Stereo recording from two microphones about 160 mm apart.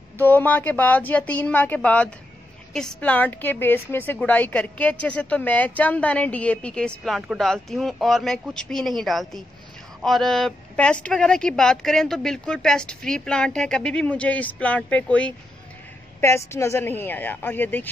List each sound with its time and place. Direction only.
0.2 s a woman's voice: 10° left (ahead or behind)